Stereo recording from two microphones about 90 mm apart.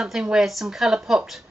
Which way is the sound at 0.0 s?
10° right (ahead or behind).